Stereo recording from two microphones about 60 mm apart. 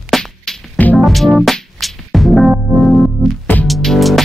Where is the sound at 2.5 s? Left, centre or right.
Centre.